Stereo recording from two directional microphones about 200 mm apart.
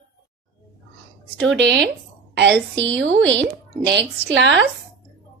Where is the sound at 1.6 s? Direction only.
60° right (ahead or behind).